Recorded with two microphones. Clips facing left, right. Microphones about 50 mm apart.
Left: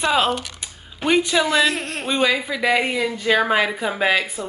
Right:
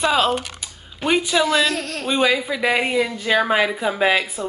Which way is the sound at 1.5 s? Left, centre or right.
Left.